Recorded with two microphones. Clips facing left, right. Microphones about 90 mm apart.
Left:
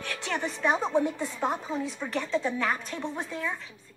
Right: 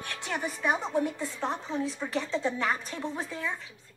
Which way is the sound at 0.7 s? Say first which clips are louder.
Left 3 dB; 20° left (ahead or behind).